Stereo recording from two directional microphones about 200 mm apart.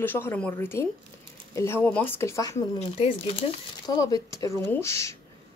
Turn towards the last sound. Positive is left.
turn(degrees=15)  # may be behind; listen again after turning